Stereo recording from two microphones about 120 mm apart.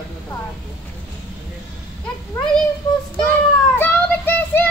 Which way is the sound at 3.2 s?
15° left (ahead or behind).